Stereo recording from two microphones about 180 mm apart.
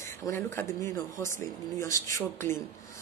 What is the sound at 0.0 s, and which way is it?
Speech, 15° left (ahead or behind).